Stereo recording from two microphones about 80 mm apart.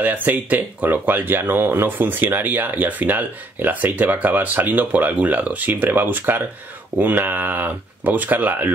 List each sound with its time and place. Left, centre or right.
0.0 s speech: right